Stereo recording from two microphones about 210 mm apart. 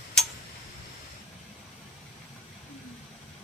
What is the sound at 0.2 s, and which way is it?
Tick-tock, centre (ahead or behind).